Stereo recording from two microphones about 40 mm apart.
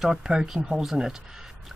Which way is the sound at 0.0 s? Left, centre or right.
Centre.